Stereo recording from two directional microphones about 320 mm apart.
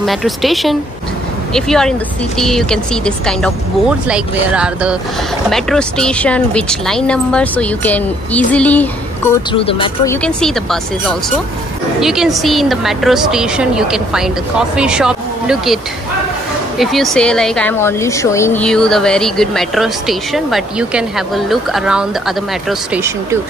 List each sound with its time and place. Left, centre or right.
0.0 s speech: centre
9.6 s speech: centre
10.2 s speech: centre